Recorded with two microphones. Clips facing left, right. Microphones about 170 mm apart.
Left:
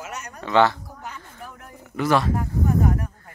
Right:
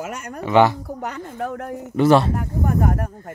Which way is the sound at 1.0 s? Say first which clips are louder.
Right 11 dB; 70° right (ahead or behind).